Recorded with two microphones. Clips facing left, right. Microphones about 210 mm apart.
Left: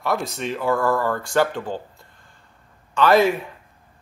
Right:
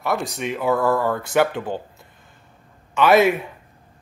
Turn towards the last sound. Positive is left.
turn(degrees=-20)  # may be behind; listen again after turning